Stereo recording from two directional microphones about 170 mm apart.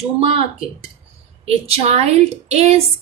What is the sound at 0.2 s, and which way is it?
A woman's voice, 35° right (ahead or behind).